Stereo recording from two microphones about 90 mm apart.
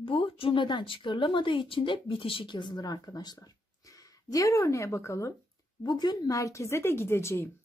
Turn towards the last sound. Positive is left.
turn(degrees=30)  # may be behind; listen again after turning